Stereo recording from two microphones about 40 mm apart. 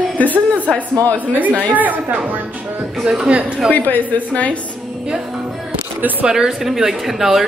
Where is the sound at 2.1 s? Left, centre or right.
Right.